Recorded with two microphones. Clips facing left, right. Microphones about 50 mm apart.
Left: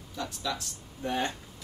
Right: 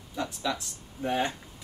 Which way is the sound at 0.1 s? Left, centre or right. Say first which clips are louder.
Right 3 dB; right.